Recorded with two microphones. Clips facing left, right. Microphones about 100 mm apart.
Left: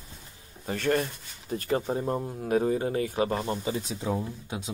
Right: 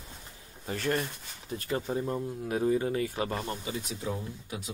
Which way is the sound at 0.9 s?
45° left (ahead or behind).